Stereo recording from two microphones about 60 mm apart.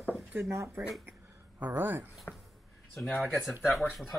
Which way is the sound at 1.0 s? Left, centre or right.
Right.